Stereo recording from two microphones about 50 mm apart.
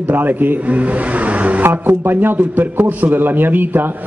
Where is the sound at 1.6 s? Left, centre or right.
Right.